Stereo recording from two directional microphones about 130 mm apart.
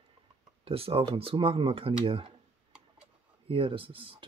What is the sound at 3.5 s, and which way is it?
Speech, 45° right (ahead or behind).